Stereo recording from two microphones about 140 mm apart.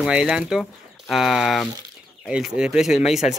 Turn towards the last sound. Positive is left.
turn(degrees=50)  # may be behind; listen again after turning